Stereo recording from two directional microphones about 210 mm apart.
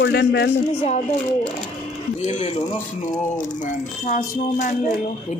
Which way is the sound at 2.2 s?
35° left (ahead or behind).